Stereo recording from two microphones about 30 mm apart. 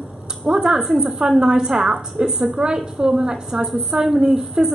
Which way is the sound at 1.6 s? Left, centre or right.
Centre.